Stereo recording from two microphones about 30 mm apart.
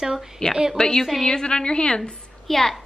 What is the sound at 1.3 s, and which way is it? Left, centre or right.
Speech, left.